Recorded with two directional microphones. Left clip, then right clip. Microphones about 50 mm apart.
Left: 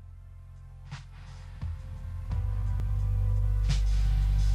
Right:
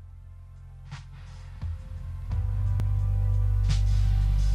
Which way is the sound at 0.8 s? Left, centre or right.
Left.